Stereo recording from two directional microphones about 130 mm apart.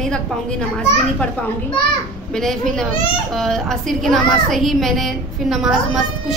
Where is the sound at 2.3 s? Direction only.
5° left (ahead or behind).